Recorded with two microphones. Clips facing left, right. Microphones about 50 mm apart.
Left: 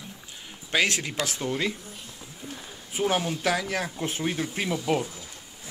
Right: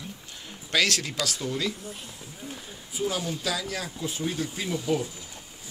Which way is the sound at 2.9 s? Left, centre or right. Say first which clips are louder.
Left 4 dB; left.